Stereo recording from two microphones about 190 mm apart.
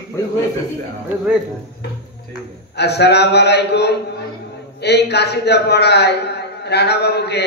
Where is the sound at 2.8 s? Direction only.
60° left (ahead or behind).